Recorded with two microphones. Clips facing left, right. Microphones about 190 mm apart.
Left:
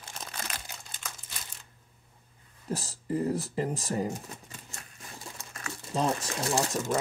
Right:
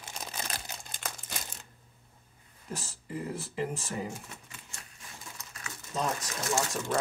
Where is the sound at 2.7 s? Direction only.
40° left (ahead or behind).